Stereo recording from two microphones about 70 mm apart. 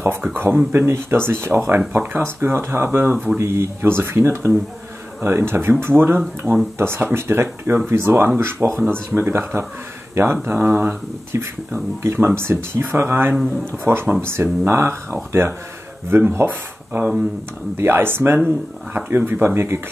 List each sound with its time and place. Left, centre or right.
0.2 s speech: right
11.3 s speech: right